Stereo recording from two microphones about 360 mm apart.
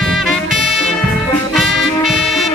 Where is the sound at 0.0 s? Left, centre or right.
Centre.